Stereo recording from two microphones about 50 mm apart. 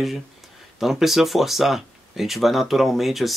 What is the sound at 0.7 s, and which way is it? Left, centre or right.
Speech, centre.